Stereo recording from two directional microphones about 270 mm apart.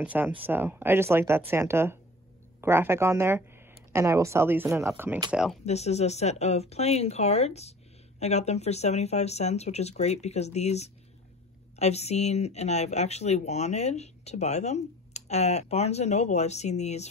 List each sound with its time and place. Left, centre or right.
0.0 s speech: centre
5.7 s speech: left